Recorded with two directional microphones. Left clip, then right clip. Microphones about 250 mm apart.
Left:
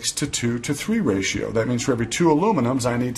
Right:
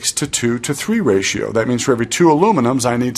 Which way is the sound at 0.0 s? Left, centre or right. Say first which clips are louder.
Right 6 dB; centre.